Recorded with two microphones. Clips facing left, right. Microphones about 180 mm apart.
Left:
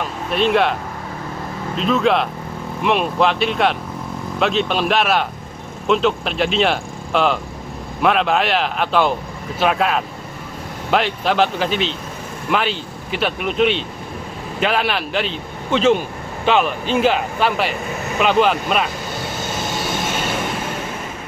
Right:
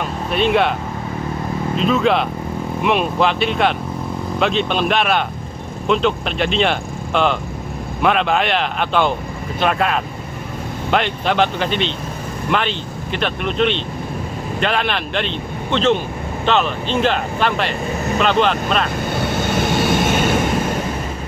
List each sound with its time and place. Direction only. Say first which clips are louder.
0.3 s speech: even; centre (ahead or behind)
1.8 s speech: even; centre (ahead or behind)
19.3 s vehicle: right 7 dB; 60° right (ahead or behind)